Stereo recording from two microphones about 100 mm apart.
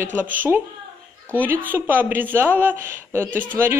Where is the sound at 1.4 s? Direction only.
20° right (ahead or behind).